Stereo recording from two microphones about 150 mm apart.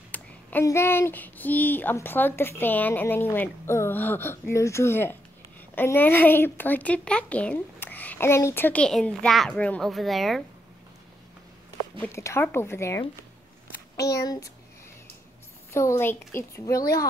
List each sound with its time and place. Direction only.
0.1 s a sound: 10° left (ahead or behind)
0.7 s a child's voice: 15° left (ahead or behind); by 10.4 s centre (ahead or behind)
12.0 s a child's voice: 20° left (ahead or behind)
14.0 s a woman's voice: 25° left (ahead or behind)
15.7 s a woman's voice: 20° left (ahead or behind)